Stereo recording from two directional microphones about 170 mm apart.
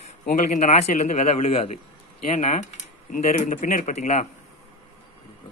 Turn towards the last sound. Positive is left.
turn(degrees=40)  # may be behind; listen again after turning